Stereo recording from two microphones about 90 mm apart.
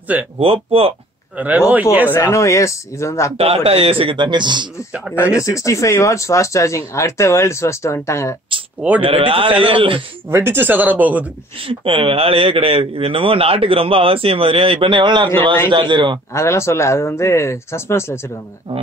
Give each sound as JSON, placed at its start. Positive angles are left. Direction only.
{"t": 0.4, "sound": "speech", "side_deg": -90}
{"t": 1.7, "sound": "speech", "side_deg": -15}
{"t": 2.0, "sound": "speech", "side_deg": 30}
{"t": 3.3, "sound": "a man's voice", "side_deg": -90}
{"t": 5.3, "sound": "speech", "side_deg": 35}
{"t": 9.0, "sound": "a man's voice", "side_deg": -85}
{"t": 10.3, "sound": "speech", "side_deg": -25}
{"t": 11.6, "sound": "a man's voice", "side_deg": -80}
{"t": 16.3, "sound": "speech", "side_deg": 30}